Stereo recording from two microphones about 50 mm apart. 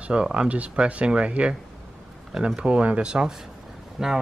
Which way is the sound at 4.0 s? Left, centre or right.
Centre.